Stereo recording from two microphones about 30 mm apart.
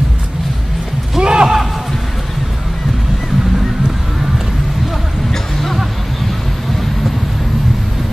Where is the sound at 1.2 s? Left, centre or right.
Right.